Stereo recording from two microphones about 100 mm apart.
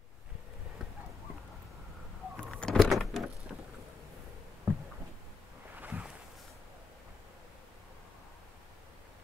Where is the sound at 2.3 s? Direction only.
5° left (ahead or behind).